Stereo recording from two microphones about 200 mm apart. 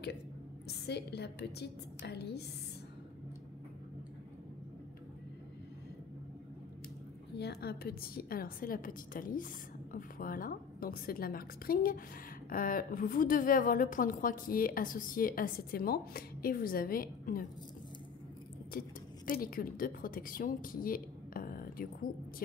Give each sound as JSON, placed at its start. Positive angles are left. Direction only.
{"t": 0.7, "sound": "a woman's voice", "side_deg": 55}
{"t": 7.3, "sound": "a woman's voice", "side_deg": 55}
{"t": 18.7, "sound": "a woman's voice", "side_deg": 45}